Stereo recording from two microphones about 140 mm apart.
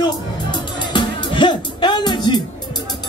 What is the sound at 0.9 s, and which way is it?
Music, 35° left (ahead or behind).